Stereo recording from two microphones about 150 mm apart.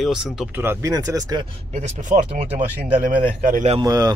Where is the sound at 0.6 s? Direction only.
20° right (ahead or behind).